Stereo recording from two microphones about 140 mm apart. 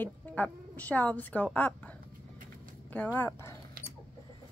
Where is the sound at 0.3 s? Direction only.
10° left (ahead or behind).